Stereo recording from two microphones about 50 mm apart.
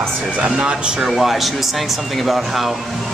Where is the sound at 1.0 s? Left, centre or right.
Centre.